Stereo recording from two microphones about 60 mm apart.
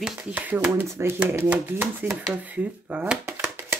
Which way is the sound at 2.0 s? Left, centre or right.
Right.